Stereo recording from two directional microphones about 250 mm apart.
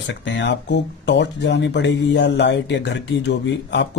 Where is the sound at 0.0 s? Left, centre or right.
Left.